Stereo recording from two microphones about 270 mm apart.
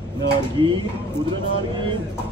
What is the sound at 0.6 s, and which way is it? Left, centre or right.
Music, centre.